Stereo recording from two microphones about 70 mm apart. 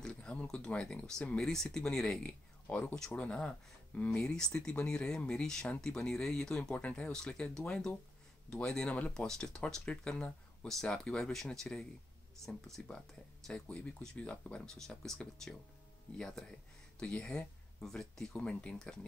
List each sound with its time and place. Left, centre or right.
0.0 s speech: centre